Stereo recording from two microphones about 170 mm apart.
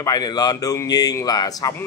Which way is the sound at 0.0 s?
20° left (ahead or behind).